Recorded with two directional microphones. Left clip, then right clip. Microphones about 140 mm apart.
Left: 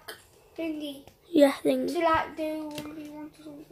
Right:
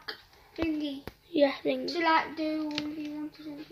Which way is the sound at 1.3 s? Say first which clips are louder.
Left 4 dB; 40° left (ahead or behind).